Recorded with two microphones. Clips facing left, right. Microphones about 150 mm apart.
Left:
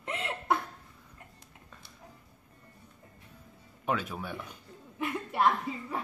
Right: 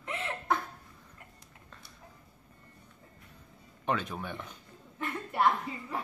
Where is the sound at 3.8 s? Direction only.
5° left (ahead or behind).